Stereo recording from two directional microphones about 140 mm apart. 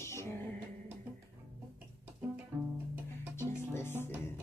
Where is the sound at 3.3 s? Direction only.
15° left (ahead or behind).